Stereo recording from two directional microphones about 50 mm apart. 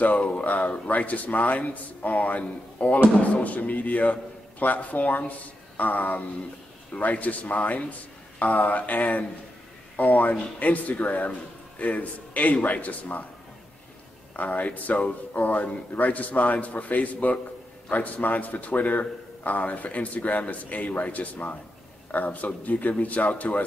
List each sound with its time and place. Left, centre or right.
0.0 s a man's voice: left
14.3 s a man's voice: left